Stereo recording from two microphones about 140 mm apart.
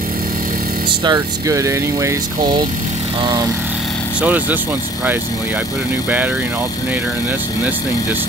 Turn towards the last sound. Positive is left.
turn(degrees=-10)  # may be behind; listen again after turning